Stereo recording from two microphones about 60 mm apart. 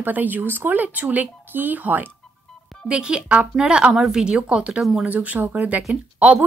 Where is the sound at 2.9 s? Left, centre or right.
Centre.